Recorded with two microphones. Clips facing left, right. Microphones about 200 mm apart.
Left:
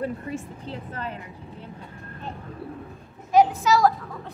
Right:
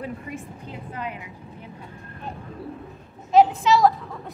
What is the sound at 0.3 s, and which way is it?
Speech, 10° right (ahead or behind).